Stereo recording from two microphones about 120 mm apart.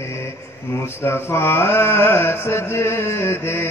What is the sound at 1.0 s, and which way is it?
Mantra, 20° left (ahead or behind).